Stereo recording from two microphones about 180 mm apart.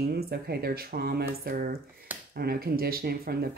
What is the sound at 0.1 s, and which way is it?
Speech, 60° right (ahead or behind).